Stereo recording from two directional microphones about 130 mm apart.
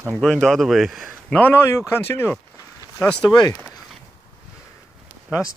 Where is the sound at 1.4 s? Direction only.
15° left (ahead or behind).